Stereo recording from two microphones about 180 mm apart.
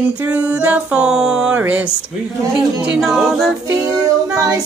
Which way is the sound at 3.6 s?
20° right (ahead or behind).